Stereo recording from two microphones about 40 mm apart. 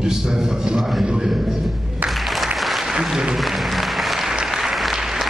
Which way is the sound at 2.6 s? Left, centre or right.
Centre.